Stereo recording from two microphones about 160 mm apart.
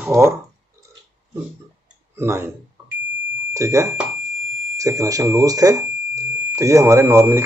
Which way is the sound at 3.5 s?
20° right (ahead or behind).